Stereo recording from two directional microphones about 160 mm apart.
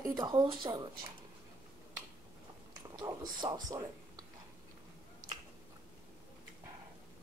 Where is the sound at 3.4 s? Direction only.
25° right (ahead or behind).